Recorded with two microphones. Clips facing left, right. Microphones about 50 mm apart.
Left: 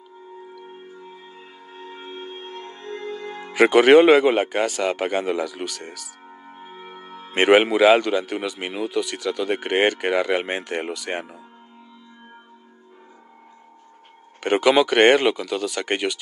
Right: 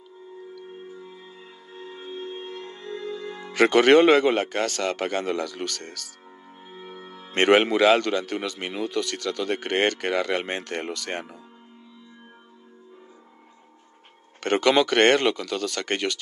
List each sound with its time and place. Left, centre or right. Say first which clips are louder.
1.7 s music: even; left
3.5 s a man's voice: left 3 dB; centre
6.4 s music: left 2 dB; left
7.2 s a man's voice: left 3 dB; centre
14.4 s a man's voice: left 3 dB; centre